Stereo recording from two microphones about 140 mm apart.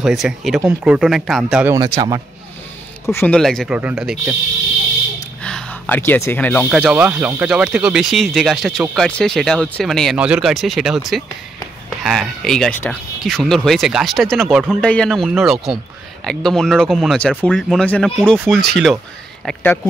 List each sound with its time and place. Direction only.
0.0 s speech: centre (ahead or behind)
1.8 s a man's voice: 30° right (ahead or behind)
3.1 s speech: 15° left (ahead or behind)
3.3 s speech: 5° left (ahead or behind)
5.4 s speech: 5° left (ahead or behind)
6.7 s speech: centre (ahead or behind)
12.0 s speech: centre (ahead or behind)
15.2 s speech: 5° right (ahead or behind)